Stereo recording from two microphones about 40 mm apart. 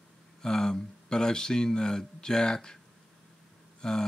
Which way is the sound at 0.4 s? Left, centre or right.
Centre.